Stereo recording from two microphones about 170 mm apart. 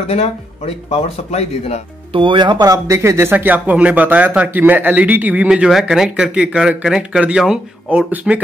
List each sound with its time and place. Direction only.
0.0 s speech: 35° left (ahead or behind)
2.1 s speech: 30° right (ahead or behind); by 8.4 s 10° right (ahead or behind)